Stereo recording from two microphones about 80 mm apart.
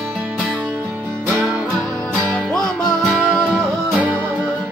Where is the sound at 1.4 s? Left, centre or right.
Centre.